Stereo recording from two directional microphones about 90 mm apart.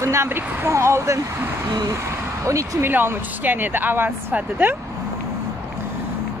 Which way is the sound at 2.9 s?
20° right (ahead or behind).